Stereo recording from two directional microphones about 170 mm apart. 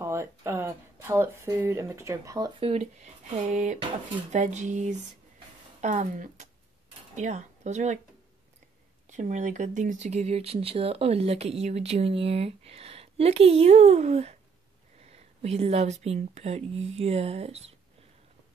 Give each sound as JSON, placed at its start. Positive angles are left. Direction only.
{"t": 0.0, "sound": "speech", "side_deg": -15}
{"t": 2.7, "sound": "speech", "side_deg": -40}
{"t": 9.1, "sound": "speech", "side_deg": -45}